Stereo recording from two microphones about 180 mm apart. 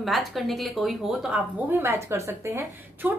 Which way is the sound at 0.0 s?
Centre (ahead or behind).